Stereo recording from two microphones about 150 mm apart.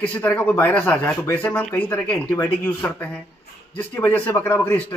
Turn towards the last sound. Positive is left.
turn(degrees=15)  # may be behind; listen again after turning